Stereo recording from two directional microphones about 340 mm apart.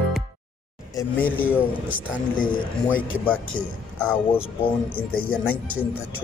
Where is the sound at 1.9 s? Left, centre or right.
Left.